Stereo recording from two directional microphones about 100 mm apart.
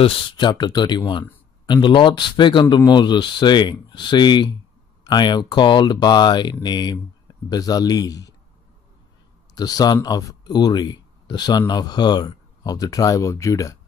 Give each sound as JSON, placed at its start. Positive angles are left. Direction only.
{"t": 0.0, "sound": "a man's voice", "side_deg": 50}
{"t": 9.6, "sound": "speech", "side_deg": 40}